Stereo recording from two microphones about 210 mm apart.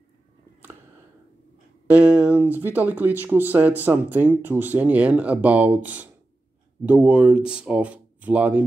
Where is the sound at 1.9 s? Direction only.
5° right (ahead or behind).